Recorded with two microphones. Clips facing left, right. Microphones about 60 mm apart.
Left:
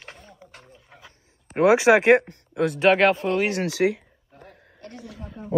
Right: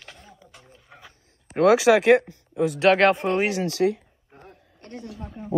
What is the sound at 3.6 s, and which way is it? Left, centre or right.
Speech, left.